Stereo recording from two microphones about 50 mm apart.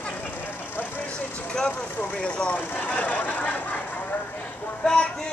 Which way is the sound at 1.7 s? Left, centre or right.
Left.